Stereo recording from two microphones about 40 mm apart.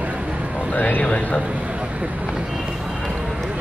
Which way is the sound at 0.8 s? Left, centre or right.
Left.